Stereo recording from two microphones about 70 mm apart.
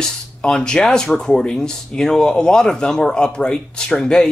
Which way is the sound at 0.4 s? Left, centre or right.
Centre.